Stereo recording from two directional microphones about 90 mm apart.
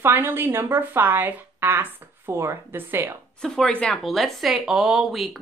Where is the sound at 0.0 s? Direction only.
25° right (ahead or behind).